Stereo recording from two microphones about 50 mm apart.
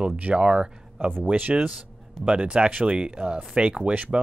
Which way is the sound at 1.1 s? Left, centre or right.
Right.